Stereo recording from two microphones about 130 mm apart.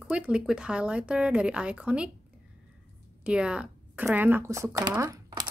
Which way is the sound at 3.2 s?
10° right (ahead or behind).